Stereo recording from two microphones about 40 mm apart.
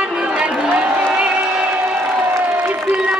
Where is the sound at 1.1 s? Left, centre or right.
Centre.